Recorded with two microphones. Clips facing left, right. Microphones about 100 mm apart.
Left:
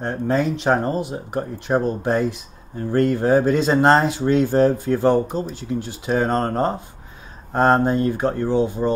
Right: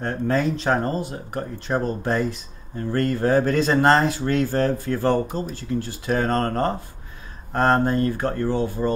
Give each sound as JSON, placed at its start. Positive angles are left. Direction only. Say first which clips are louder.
{"t": 0.0, "sound": "speech", "louder": "left 1 dB", "side_deg": 15}